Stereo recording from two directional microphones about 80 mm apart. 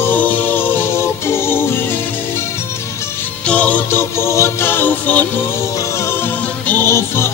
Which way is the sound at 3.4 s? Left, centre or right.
Centre.